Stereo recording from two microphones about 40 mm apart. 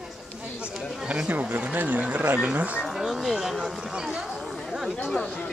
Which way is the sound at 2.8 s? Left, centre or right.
Centre.